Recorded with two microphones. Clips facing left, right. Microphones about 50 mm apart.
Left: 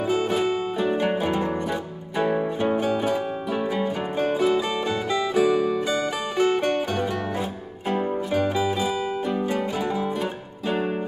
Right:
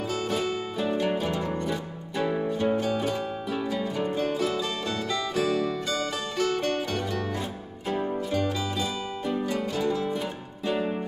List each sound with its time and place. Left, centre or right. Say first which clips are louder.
0.1 s music: left 6 dB; centre
0.9 s music: left 4 dB; left